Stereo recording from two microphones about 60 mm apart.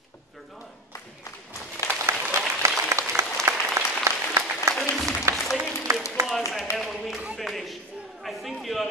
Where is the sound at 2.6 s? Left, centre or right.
Right.